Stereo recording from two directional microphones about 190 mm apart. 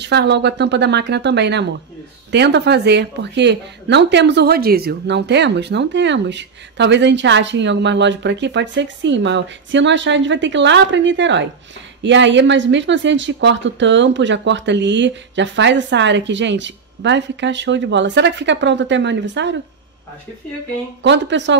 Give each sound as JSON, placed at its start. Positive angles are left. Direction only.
{"t": 0.0, "sound": "speech", "side_deg": -65}
{"t": 21.0, "sound": "speech", "side_deg": -70}